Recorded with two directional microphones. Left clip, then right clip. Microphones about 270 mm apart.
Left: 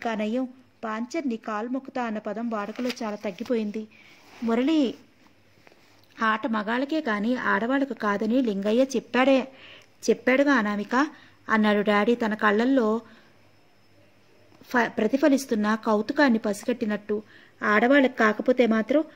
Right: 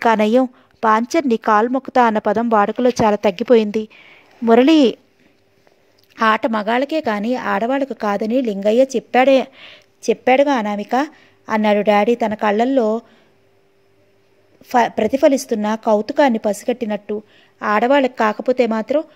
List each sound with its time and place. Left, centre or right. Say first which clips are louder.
0.0 s a woman's voice: right 14 dB; right
6.1 s speech: right 9 dB; right
14.7 s speech: right 8 dB; right